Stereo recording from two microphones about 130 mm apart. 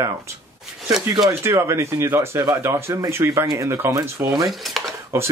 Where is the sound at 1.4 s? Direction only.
20° right (ahead or behind).